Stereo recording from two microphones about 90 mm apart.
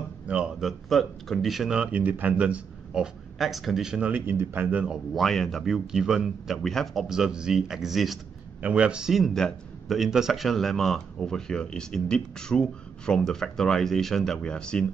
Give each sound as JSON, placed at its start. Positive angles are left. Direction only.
{"t": 0.3, "sound": "speech", "side_deg": -10}
{"t": 4.1, "sound": "speech", "side_deg": -20}
{"t": 5.1, "sound": "speech", "side_deg": 5}